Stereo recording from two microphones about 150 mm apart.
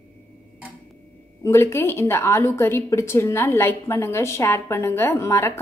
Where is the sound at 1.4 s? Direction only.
15° left (ahead or behind).